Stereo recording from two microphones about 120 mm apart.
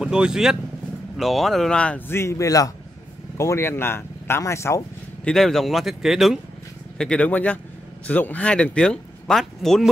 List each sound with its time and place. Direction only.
0.0 s speech: 5° right (ahead or behind); by 4.8 s 25° left (ahead or behind)
5.2 s speech: 5° left (ahead or behind)
7.0 s speech: 10° left (ahead or behind)